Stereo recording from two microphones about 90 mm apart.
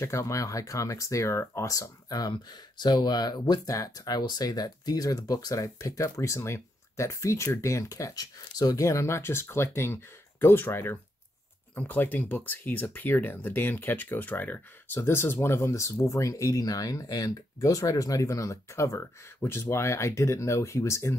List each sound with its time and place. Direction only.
0.0 s speech: 35° left (ahead or behind)